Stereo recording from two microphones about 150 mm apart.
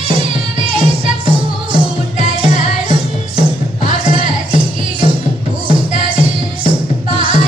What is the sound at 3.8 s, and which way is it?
Music, 35° right (ahead or behind).